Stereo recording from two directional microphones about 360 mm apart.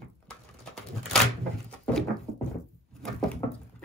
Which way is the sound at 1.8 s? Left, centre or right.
Centre.